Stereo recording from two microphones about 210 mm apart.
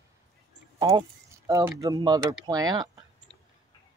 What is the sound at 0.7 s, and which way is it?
Keys jangling, 15° right (ahead or behind).